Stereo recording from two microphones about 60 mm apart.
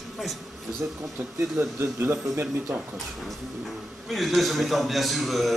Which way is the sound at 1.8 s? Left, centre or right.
Right.